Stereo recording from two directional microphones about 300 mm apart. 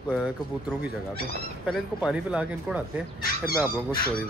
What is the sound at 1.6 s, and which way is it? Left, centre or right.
Speech, centre.